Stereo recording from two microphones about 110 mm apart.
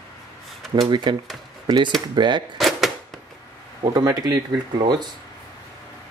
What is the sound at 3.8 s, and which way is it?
Speech, 35° right (ahead or behind).